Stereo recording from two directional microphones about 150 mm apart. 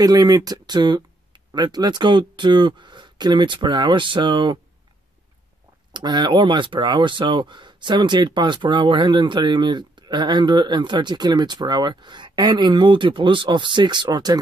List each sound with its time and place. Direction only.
0.0 s speech: 25° right (ahead or behind)
5.9 s speech: 30° right (ahead or behind)